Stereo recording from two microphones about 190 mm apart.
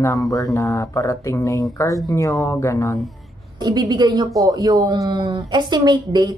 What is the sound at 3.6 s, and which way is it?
Speech, 20° right (ahead or behind).